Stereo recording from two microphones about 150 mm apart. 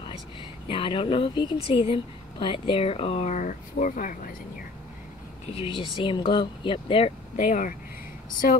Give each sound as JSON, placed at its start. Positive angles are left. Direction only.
{"t": 0.7, "sound": "speech", "side_deg": 35}
{"t": 5.5, "sound": "speech", "side_deg": 35}
{"t": 7.3, "sound": "speech", "side_deg": 60}